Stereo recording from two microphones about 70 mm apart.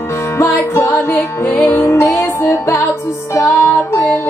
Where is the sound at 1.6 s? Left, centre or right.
Left.